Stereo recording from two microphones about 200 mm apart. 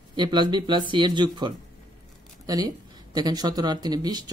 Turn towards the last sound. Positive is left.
turn(degrees=-20)  # may be behind; listen again after turning